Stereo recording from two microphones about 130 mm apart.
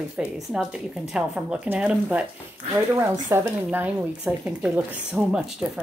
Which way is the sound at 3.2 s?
15° right (ahead or behind).